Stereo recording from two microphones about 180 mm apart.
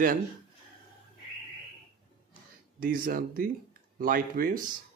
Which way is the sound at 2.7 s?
55° right (ahead or behind).